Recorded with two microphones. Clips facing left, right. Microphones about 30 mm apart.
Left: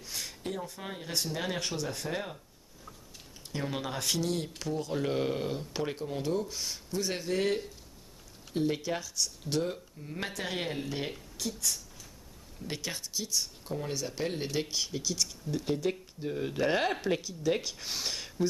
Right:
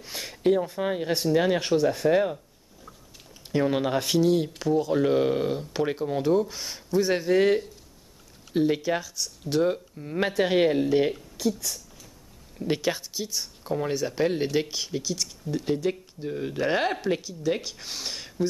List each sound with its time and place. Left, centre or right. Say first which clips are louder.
0.0 s speech: right 12 dB; right
3.5 s speech: right 11 dB; centre
4.3 s speech: right 10 dB; centre
9.6 s speech: right 10 dB; right
11.3 s a sound: right 7 dB; centre
12.5 s speech: right 11 dB; right